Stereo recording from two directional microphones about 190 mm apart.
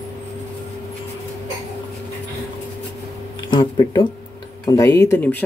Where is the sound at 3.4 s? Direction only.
25° left (ahead or behind).